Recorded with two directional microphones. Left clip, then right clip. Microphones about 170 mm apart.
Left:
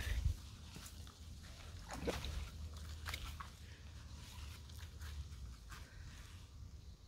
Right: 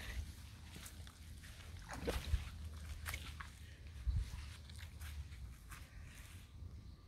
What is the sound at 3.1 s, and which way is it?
Biting, 15° right (ahead or behind).